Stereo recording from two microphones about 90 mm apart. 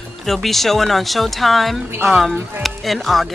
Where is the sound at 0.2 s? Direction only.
Centre (ahead or behind).